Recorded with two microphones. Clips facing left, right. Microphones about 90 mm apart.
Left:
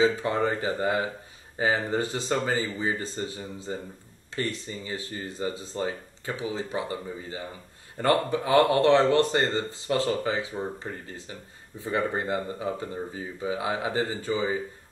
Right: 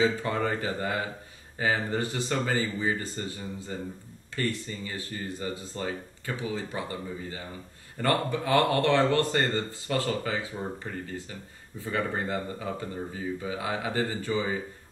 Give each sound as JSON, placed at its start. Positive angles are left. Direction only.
{"t": 0.0, "sound": "speech", "side_deg": 20}